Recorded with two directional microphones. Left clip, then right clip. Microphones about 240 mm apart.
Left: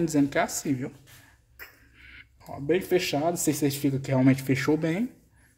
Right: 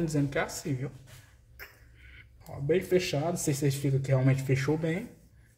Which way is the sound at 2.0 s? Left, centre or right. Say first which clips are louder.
Left 6 dB; left.